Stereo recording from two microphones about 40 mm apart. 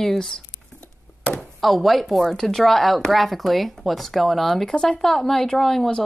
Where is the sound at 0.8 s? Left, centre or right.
Left.